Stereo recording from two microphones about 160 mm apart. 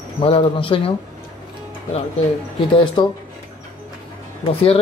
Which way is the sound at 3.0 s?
30° left (ahead or behind).